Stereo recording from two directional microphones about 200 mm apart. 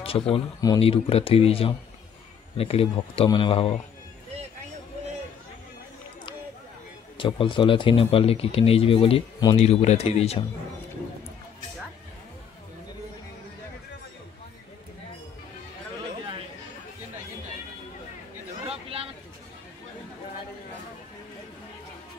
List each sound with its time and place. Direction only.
0.0 s speech: 30° left (ahead or behind)
7.2 s speech: 25° left (ahead or behind)
18.7 s a sound: 30° right (ahead or behind)